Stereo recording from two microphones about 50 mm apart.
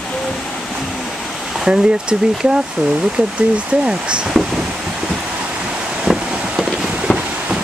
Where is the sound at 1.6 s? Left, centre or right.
Centre.